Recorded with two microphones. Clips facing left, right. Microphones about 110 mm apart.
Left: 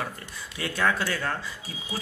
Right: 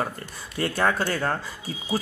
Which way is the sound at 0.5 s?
40° right (ahead or behind).